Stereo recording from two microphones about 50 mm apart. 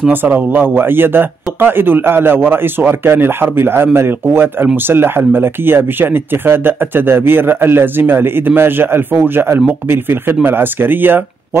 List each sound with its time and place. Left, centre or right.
0.1 s speech: right